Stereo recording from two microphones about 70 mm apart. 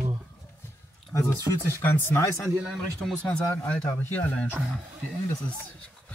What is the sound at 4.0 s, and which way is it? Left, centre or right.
Speech, left.